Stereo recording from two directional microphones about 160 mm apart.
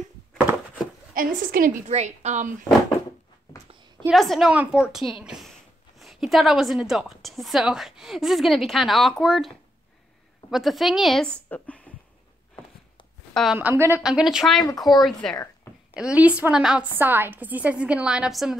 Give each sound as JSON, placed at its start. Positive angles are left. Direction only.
{"t": 1.1, "sound": "a woman's voice", "side_deg": -60}
{"t": 1.9, "sound": "a woman's voice", "side_deg": -45}
{"t": 4.1, "sound": "a woman's voice", "side_deg": 0}
{"t": 10.5, "sound": "a woman's voice", "side_deg": 0}
{"t": 11.4, "sound": "a sound", "side_deg": 10}
{"t": 13.3, "sound": "a woman's voice", "side_deg": 0}
{"t": 13.6, "sound": "a woman's voice", "side_deg": -15}